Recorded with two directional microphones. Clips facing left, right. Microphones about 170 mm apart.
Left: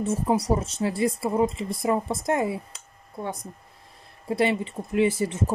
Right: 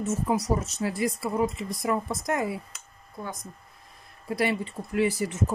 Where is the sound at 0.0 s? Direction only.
30° left (ahead or behind).